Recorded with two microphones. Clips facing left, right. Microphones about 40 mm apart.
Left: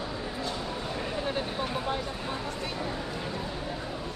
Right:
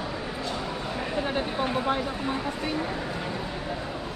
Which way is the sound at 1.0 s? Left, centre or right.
Centre.